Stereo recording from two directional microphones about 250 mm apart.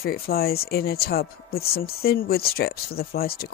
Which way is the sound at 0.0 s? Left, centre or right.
Left.